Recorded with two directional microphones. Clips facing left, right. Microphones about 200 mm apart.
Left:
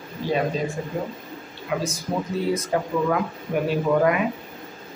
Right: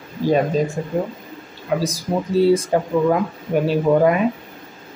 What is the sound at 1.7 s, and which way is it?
Speech, 40° right (ahead or behind).